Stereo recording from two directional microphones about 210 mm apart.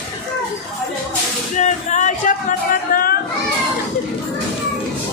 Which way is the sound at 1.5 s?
35° left (ahead or behind).